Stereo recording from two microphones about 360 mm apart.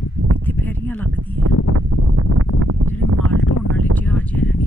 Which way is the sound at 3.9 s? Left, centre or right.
Centre.